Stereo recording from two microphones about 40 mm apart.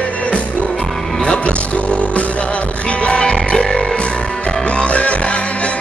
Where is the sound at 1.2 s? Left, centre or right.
Left.